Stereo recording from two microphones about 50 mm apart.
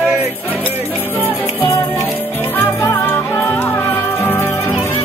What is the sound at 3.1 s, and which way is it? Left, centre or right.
Music, left.